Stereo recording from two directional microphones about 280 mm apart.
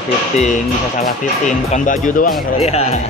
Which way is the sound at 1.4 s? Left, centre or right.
Left.